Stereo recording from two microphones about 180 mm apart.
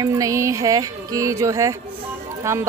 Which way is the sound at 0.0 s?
15° right (ahead or behind).